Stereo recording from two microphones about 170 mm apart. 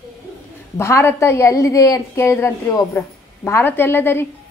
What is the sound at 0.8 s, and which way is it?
A woman's voice, 15° left (ahead or behind).